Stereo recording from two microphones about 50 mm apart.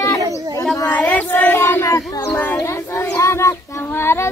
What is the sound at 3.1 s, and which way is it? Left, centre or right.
Child singing, left.